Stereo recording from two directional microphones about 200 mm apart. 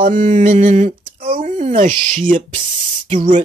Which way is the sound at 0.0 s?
40° right (ahead or behind).